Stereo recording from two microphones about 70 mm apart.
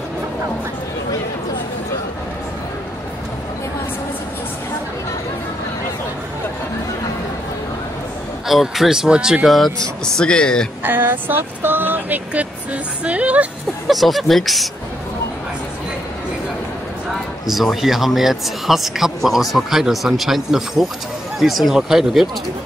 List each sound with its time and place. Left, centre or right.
8.5 s speech: centre
10.0 s speech: centre
10.8 s speech: right
13.8 s speech: centre
17.1 s speech: centre